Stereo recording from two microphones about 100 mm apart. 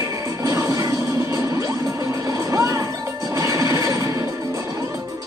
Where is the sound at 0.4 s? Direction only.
35° right (ahead or behind).